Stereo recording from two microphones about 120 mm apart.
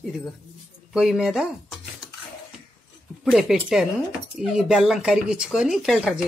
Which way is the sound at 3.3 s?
Centre (ahead or behind).